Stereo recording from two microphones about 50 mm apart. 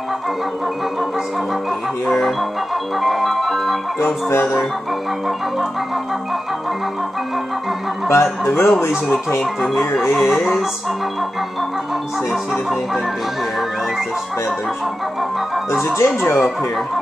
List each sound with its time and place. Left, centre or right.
2.0 s speech: centre
3.0 s speech: centre
4.3 s speech: left
8.1 s speech: left
10.2 s speech: centre
16.0 s speech: left